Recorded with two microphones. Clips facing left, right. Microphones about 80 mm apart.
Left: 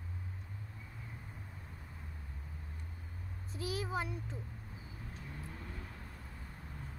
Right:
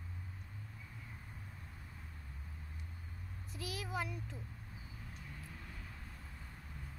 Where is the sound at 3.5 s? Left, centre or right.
Left.